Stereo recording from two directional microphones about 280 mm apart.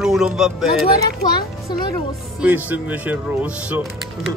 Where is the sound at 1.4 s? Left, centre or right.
Centre.